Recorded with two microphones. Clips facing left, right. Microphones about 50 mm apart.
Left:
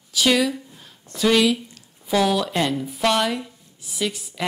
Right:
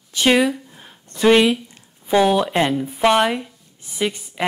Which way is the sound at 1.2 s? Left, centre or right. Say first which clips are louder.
Right 4 dB; right.